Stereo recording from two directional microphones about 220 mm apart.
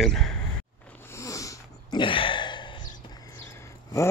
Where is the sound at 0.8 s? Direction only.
10° left (ahead or behind).